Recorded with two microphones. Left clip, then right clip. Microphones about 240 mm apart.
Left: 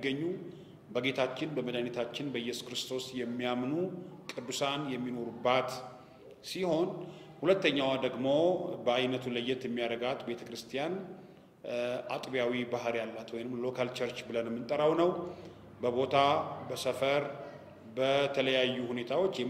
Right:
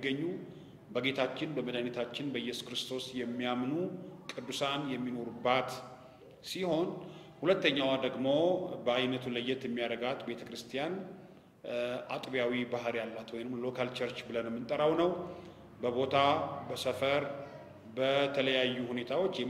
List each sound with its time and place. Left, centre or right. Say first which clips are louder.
0.9 s a man's voice: left 1 dB; left